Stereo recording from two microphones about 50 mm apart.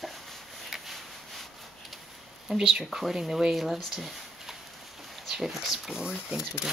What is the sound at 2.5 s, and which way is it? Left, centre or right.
Speech, centre.